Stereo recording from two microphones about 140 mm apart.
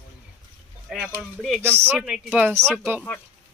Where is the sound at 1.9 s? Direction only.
5° right (ahead or behind).